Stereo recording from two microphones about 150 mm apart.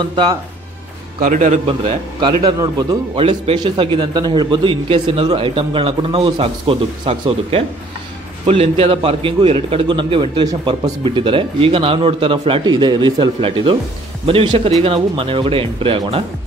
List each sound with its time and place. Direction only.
0.0 s a man's voice: 30° right (ahead or behind)
1.2 s a man's voice: 55° right (ahead or behind)
1.7 s a man's voice: 30° right (ahead or behind)
3.2 s a man's voice: 40° right (ahead or behind)